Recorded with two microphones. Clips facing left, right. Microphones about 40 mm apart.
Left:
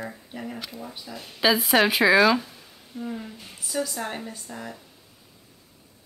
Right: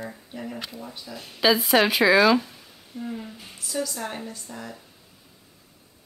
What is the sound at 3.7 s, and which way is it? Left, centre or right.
Speech, left.